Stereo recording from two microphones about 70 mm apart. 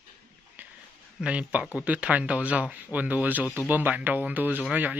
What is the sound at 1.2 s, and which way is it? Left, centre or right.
Speech, centre.